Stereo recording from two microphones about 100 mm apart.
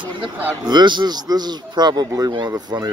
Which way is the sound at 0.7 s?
45° right (ahead or behind).